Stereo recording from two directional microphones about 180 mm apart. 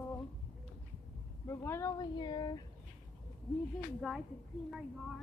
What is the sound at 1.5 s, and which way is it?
Speech, 15° left (ahead or behind).